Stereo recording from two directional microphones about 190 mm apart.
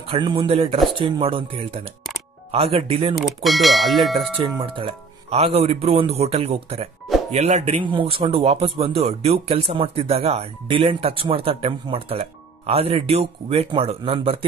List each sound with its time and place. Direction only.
0.1 s speech: 25° right (ahead or behind)
3.4 s bell: centre (ahead or behind)
4.6 s speech: 25° right (ahead or behind)